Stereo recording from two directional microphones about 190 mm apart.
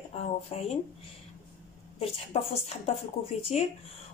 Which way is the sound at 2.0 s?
30° left (ahead or behind).